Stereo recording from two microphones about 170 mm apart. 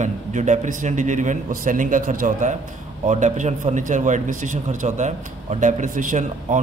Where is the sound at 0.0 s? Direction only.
45° right (ahead or behind).